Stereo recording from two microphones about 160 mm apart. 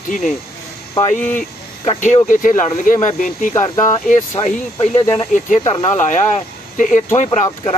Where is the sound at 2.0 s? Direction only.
50° left (ahead or behind).